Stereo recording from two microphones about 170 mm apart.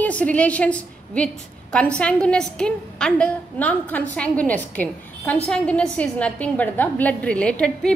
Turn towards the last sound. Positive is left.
turn(degrees=5)  # may be behind; listen again after turning